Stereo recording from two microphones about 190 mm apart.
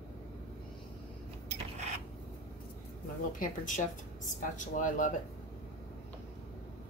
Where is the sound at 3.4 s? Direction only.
40° left (ahead or behind).